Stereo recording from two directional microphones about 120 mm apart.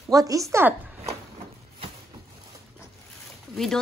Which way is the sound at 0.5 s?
20° right (ahead or behind).